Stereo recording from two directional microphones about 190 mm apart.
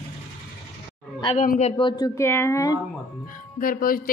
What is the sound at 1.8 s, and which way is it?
Speech, 20° left (ahead or behind).